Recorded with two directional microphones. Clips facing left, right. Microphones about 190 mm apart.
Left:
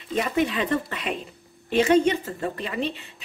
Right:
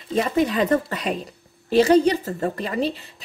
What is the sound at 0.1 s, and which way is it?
A woman's voice, 35° right (ahead or behind).